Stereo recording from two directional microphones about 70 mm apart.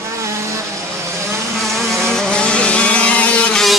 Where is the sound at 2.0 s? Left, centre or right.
Centre.